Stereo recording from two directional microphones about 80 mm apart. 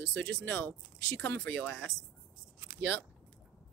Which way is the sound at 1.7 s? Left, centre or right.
Centre.